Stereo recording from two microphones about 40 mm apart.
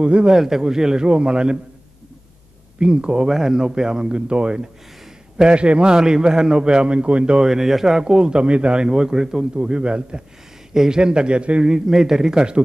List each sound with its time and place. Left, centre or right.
0.0 s a man's voice: right
0.4 s a man's voice: centre
2.8 s a man's voice: right
3.3 s a man's voice: centre; by 7.3 s right
7.3 s speech: centre
8.0 s a man's voice: right
9.6 s a man's voice: right
10.7 s a man's voice: centre
11.6 s speech: centre